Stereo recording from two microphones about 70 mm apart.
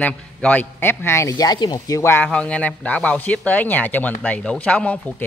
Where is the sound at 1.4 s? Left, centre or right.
Left.